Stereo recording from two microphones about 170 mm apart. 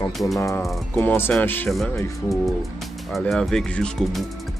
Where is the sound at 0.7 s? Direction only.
5° left (ahead or behind).